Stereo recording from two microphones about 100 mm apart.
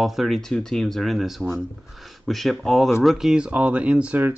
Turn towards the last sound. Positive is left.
turn(degrees=-10)  # may be behind; listen again after turning